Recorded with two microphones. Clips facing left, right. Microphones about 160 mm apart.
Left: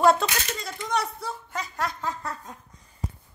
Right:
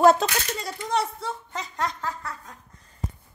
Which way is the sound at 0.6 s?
35° right (ahead or behind).